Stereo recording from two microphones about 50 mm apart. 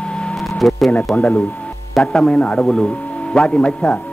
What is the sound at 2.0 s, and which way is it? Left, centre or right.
A man's voice, centre.